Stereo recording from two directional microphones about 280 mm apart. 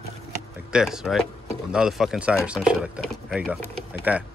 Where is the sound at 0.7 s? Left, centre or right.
Centre.